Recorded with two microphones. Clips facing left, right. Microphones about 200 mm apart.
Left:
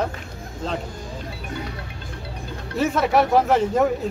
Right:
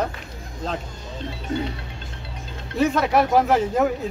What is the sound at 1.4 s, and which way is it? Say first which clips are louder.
Speech: right 7 dB; 25° right (ahead or behind).